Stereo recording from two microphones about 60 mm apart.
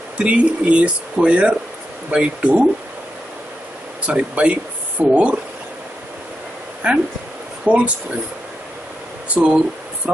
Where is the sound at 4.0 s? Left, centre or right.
Right.